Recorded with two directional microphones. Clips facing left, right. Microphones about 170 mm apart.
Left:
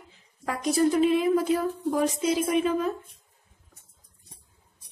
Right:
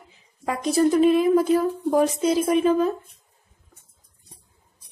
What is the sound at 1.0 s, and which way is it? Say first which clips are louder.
Speech: right 5 dB; 40° right (ahead or behind).